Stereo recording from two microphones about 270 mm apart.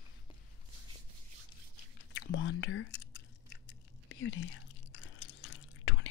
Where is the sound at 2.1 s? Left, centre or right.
Left.